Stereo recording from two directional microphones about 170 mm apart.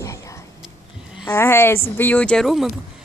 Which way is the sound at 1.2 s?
15° left (ahead or behind).